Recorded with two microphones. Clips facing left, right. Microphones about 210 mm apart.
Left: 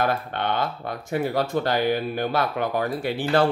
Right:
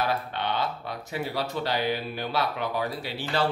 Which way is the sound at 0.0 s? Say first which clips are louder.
Left 4 dB; 50° left (ahead or behind).